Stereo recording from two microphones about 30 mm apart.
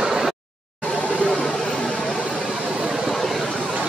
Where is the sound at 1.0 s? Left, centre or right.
Left.